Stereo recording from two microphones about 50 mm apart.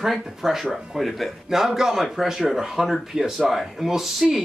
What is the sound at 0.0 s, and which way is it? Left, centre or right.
Speech, centre.